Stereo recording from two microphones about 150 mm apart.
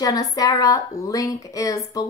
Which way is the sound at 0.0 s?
25° left (ahead or behind).